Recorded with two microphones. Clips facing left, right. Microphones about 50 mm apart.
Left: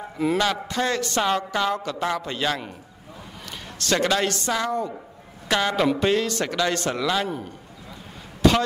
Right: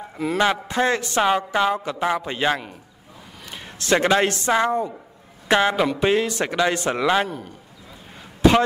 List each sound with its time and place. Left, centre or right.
0.2 s a man's voice: centre
0.7 s a woman's voice: right
3.8 s a woman's voice: right
8.4 s a sound: right